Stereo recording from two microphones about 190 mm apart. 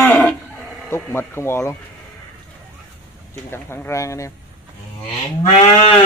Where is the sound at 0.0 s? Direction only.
10° left (ahead or behind).